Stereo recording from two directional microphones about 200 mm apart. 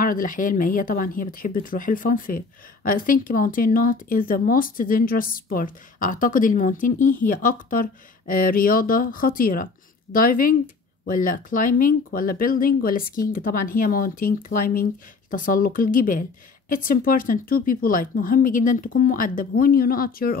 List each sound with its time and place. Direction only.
0.0 s speech: 45° left (ahead or behind)